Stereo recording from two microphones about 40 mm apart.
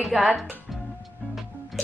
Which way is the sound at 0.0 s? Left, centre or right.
Centre.